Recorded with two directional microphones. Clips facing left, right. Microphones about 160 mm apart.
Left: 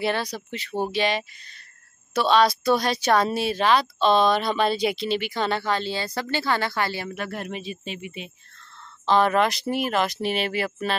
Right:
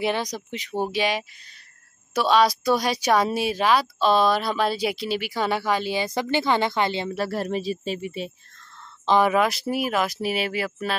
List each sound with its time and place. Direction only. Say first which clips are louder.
0.0 s speech: right 1 dB; 15° right (ahead or behind)
7.2 s speech: right 6 dB; 35° right (ahead or behind)
9.0 s speech: even; 15° right (ahead or behind)